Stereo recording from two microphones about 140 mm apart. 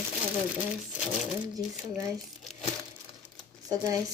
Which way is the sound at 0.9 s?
5° right (ahead or behind).